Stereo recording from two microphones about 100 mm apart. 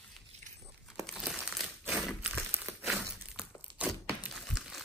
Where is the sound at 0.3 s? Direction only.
90° right.